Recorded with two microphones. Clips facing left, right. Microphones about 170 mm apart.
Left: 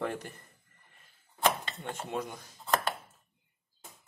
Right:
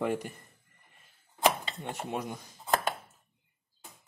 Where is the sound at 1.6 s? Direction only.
10° right (ahead or behind).